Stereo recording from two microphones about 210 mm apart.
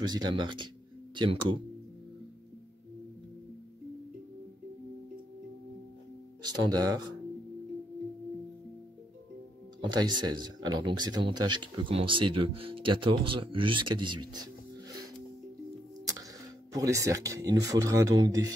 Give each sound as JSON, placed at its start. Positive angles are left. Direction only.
{"t": 0.0, "sound": "speech", "side_deg": -20}
{"t": 6.4, "sound": "speech", "side_deg": -20}
{"t": 9.8, "sound": "speech", "side_deg": -20}
{"t": 16.7, "sound": "speech", "side_deg": -15}